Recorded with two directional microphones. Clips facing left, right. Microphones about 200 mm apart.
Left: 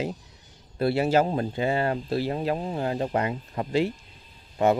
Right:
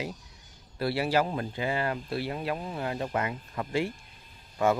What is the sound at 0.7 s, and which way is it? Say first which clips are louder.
Speech: left 5 dB; 25° left (ahead or behind).